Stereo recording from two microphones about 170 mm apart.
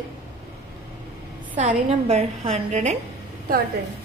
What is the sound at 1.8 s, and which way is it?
A woman's voice, 35° right (ahead or behind).